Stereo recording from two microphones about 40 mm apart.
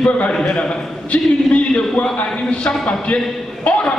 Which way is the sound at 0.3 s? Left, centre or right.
Left.